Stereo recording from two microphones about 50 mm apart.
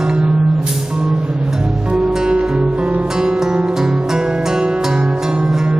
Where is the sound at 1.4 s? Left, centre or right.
Centre.